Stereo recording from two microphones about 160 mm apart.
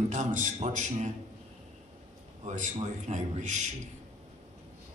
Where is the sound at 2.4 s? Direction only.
50° right (ahead or behind).